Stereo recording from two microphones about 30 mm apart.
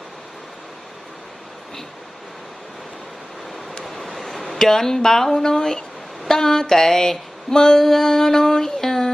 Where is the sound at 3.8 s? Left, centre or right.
Centre.